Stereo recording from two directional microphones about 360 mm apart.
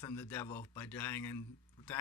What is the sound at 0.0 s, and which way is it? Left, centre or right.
Speech, centre.